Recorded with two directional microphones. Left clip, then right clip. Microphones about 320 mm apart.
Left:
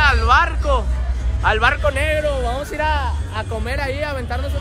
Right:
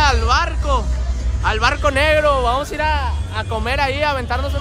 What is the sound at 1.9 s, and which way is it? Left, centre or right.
Speech, right.